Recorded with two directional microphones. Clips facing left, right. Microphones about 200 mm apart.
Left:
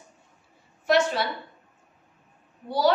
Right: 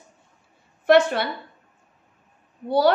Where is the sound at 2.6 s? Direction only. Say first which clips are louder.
Right 4 dB; 60° right (ahead or behind).